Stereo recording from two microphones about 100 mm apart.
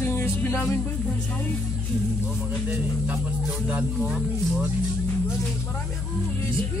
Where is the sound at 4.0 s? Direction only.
Centre (ahead or behind).